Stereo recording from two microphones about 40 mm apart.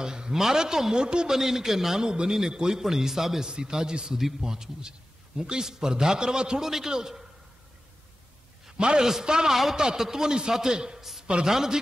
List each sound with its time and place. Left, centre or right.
0.0 s a man's voice: centre
8.7 s a man's voice: right
9.5 s a man's voice: centre
11.0 s a sound: centre
11.4 s a man's voice: centre